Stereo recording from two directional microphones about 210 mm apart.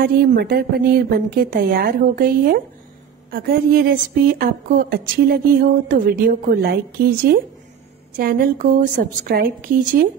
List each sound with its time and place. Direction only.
0.0 s a woman's voice: 45° right (ahead or behind)